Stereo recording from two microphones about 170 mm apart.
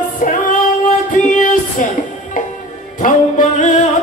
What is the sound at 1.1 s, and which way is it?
Music, 50° left (ahead or behind).